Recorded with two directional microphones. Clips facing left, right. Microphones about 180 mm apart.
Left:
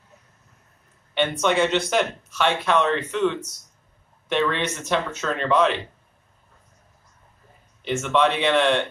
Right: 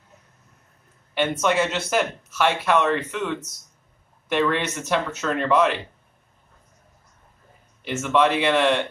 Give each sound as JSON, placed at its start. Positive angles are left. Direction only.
{"t": 1.1, "sound": "speech", "side_deg": -5}
{"t": 7.8, "sound": "speech", "side_deg": -5}